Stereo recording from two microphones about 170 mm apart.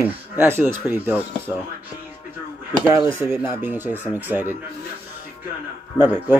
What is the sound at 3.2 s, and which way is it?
Speech, centre (ahead or behind).